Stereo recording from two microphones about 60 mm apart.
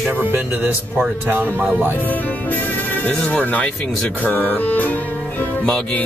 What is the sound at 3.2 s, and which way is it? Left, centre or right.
Speech, left.